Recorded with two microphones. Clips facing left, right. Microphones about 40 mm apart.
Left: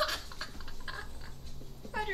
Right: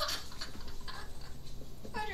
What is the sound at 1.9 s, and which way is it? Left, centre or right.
Cat, left.